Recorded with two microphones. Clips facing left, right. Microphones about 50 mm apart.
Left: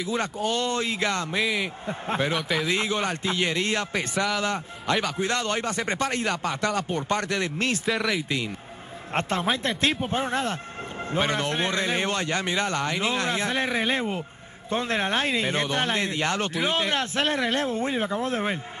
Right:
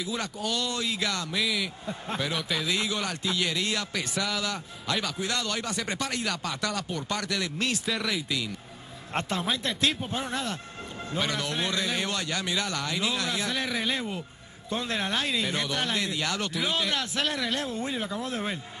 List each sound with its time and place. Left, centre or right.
0.2 s speech: left
4.1 s a man's voice: centre
4.4 s speech: left
7.9 s speech: centre
8.3 s speech: left